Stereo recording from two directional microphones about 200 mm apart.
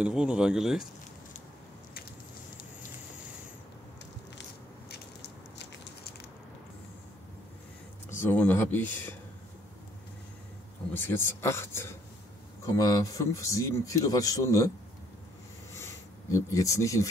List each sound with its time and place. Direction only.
0.0 s speech: 5° right (ahead or behind)
4.4 s biting: 55° left (ahead or behind)
8.2 s a man's voice: 10° left (ahead or behind)
10.9 s a man's voice: 10° left (ahead or behind)
15.7 s a sound: 15° left (ahead or behind)